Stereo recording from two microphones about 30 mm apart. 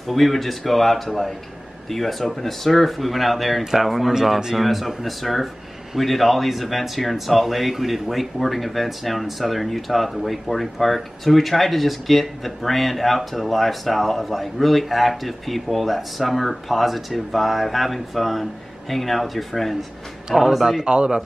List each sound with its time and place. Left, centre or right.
0.1 s speech: centre
20.8 s speech: right